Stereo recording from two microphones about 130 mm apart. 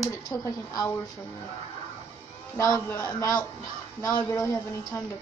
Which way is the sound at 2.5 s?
25° left (ahead or behind).